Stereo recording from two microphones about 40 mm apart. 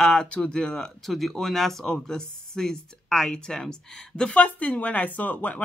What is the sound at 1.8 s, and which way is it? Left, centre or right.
Speech, centre.